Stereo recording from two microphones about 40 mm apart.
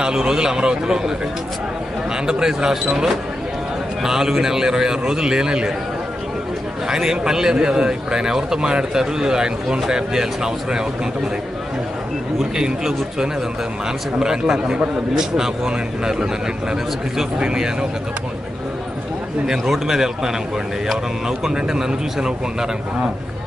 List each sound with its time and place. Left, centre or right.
0.0 s a man's voice: centre
2.2 s a man's voice: centre
6.9 s a man's voice: centre
12.4 s a man's voice: centre
19.4 s a man's voice: centre
21.3 s a man's voice: centre